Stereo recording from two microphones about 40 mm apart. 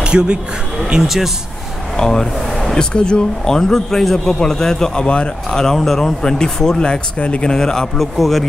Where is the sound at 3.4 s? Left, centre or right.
Centre.